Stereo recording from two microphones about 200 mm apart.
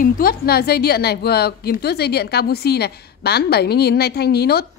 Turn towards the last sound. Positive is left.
turn(degrees=50)  # may be behind; listen again after turning